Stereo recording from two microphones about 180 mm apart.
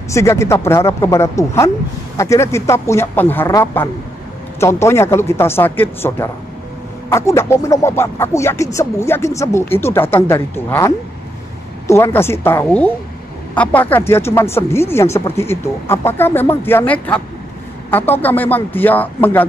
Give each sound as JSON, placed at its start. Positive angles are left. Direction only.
{"t": 0.1, "sound": "speech", "side_deg": 15}
{"t": 11.9, "sound": "speech", "side_deg": 15}